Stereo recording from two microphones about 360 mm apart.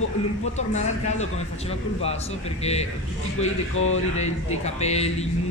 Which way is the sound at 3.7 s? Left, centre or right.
Left.